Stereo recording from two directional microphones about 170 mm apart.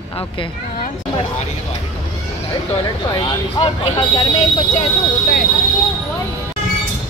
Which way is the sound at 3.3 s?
30° left (ahead or behind).